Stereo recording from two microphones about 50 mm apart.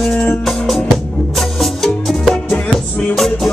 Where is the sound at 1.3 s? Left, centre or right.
Centre.